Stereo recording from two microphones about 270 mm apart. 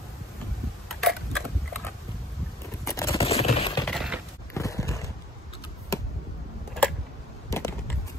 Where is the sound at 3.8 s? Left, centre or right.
Centre.